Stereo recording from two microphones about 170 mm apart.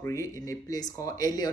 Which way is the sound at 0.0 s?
20° left (ahead or behind).